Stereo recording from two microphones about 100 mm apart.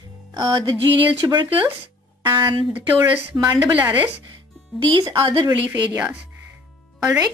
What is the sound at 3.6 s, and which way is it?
Speech, 15° right (ahead or behind).